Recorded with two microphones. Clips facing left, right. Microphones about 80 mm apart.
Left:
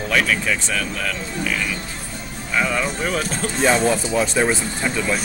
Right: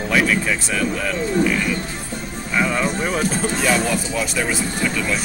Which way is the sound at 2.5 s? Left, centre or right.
Centre.